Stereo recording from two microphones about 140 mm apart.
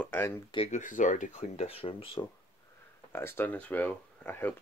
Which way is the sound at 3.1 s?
15° left (ahead or behind).